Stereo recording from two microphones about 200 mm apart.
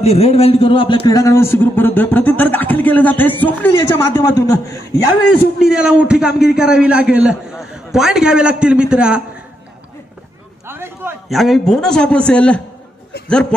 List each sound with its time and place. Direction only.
0.0 s a man's voice: 30° left (ahead or behind); by 3.7 s 10° left (ahead or behind)
3.7 s a man's voice: 20° left (ahead or behind)
5.6 s a man's voice: 5° right (ahead or behind)
10.7 s a sound: 10° right (ahead or behind)
11.2 s a man's voice: centre (ahead or behind)